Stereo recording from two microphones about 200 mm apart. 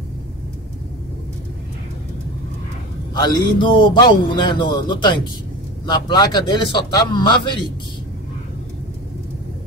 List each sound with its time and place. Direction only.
3.2 s a man's voice: 20° left (ahead or behind)